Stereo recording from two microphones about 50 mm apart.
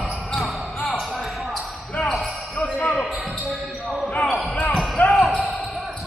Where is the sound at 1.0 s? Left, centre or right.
Centre.